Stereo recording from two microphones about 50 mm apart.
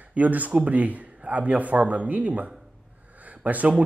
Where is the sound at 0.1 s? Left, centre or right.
Right.